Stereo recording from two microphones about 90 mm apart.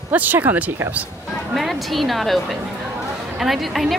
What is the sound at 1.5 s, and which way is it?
A woman's voice, centre (ahead or behind).